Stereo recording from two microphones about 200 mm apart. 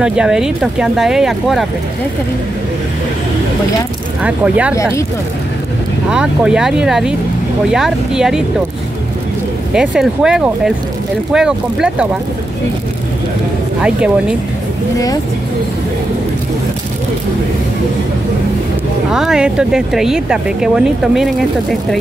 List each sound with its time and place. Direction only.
0.0 s speech: 5° right (ahead or behind)
4.2 s speech: 5° right (ahead or behind)
6.0 s speech: 5° right (ahead or behind)
9.8 s speech: 5° right (ahead or behind)
13.7 s speech: 5° right (ahead or behind)
19.1 s speech: 5° right (ahead or behind)